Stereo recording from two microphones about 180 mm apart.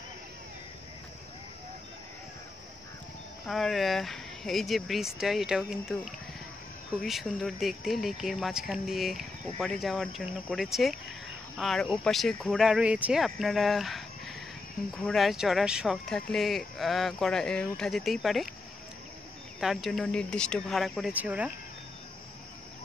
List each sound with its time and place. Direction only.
3.4 s speech: centre (ahead or behind)
7.0 s speech: centre (ahead or behind)
19.6 s speech: centre (ahead or behind)